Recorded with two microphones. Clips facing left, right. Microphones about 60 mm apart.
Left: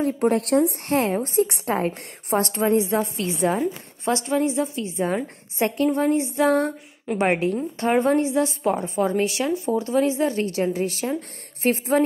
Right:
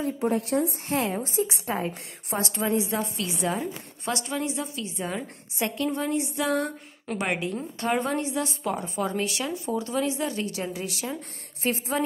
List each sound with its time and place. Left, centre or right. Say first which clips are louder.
0.0 s speech: left 5 dB; left
0.4 s speech: left 6 dB; left
0.9 s a woman's voice: left 5 dB; left
1.3 s speech: left 6 dB; left
1.9 s a woman's voice: left 7 dB; left